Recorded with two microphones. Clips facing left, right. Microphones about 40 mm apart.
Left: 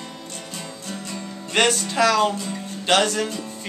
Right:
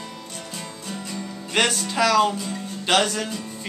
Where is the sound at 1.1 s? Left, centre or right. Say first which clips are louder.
Even; centre.